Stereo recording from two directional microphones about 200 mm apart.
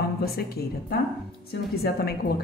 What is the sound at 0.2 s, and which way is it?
A woman's voice, 50° left (ahead or behind).